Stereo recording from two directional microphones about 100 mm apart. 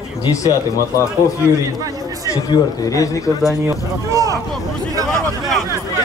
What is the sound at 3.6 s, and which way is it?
Speech, 30° right (ahead or behind).